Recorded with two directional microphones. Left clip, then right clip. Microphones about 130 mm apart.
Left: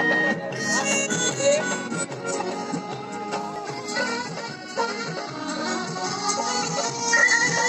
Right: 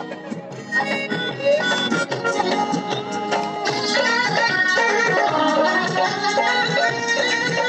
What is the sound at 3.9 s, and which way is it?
Music, 35° right (ahead or behind).